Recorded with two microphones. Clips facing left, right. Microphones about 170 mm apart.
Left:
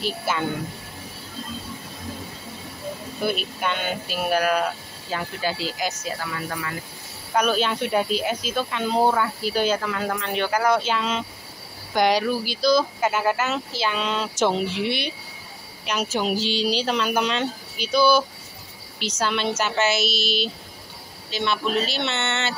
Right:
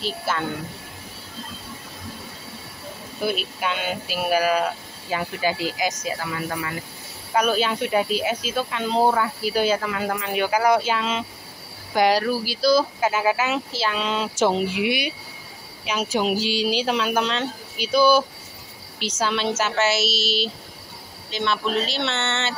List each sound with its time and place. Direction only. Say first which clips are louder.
3.2 s speech: right 1 dB; centre (ahead or behind)
7.3 s speech: right 1 dB; 5° right (ahead or behind)
17.7 s speech: right 1 dB; 5° right (ahead or behind)